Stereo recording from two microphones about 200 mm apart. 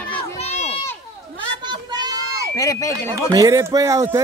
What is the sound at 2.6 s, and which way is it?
Speech, 15° left (ahead or behind).